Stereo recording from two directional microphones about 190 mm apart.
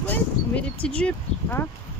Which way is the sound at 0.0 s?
10° left (ahead or behind).